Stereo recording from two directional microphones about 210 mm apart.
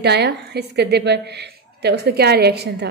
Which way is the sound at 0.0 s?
55° right (ahead or behind).